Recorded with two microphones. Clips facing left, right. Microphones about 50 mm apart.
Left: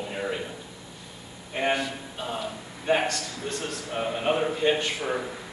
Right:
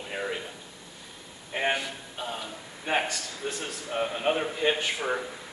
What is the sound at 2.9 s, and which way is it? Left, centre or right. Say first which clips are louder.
A man's voice: left 4 dB; centre.